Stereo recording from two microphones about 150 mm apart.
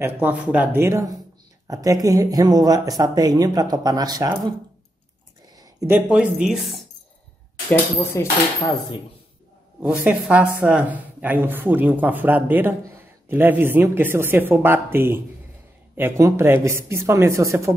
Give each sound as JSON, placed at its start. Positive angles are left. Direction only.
{"t": 0.0, "sound": "speech", "side_deg": -10}
{"t": 5.6, "sound": "a sound", "side_deg": -20}
{"t": 5.9, "sound": "speech", "side_deg": -5}
{"t": 7.7, "sound": "speech", "side_deg": 15}
{"t": 9.8, "sound": "speech", "side_deg": -10}